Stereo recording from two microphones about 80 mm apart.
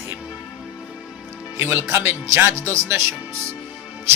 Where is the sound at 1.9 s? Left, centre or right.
Right.